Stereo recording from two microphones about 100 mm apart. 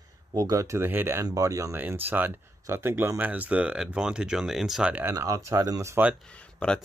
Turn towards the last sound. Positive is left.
turn(degrees=10)  # may be behind; listen again after turning